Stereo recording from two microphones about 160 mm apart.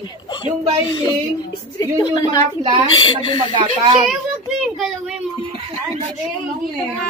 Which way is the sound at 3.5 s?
30° right (ahead or behind).